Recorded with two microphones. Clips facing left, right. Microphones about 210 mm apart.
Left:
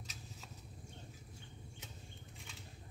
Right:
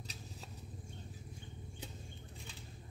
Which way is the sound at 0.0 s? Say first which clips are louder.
Right 3 dB; 35° right (ahead or behind).